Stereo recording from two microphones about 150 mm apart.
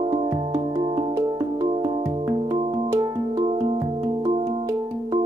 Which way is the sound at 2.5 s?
40° right (ahead or behind).